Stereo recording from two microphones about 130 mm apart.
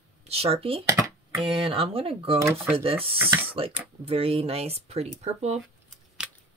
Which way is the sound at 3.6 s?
45° right (ahead or behind).